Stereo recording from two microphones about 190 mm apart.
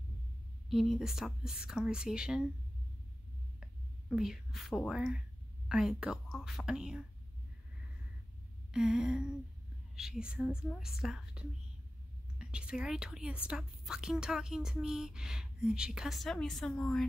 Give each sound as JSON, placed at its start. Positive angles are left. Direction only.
{"t": 0.7, "sound": "a woman's voice", "side_deg": 0}
{"t": 4.1, "sound": "a woman's voice", "side_deg": 0}
{"t": 8.7, "sound": "a woman's voice", "side_deg": -5}